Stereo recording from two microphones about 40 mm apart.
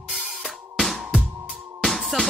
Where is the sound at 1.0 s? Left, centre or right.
Centre.